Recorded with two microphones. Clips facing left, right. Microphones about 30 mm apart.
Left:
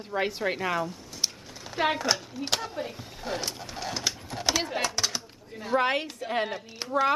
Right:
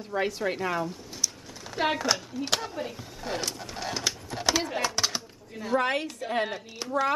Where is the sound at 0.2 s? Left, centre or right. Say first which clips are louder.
Even; centre.